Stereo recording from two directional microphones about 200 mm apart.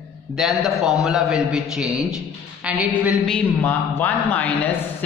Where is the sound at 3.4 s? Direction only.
10° left (ahead or behind).